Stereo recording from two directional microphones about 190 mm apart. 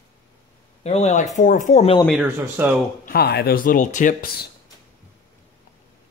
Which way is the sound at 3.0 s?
55° left (ahead or behind).